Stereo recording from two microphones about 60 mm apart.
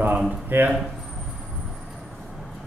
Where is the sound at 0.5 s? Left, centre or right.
Right.